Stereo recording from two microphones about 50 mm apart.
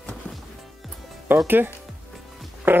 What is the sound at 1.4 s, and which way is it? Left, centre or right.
Speech, right.